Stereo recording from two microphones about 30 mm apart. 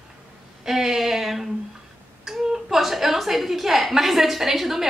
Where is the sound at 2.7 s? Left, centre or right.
Centre.